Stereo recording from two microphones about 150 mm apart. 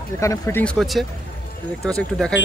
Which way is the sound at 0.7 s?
Centre (ahead or behind).